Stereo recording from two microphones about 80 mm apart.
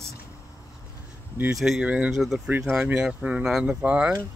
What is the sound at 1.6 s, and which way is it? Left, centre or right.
Speech, centre.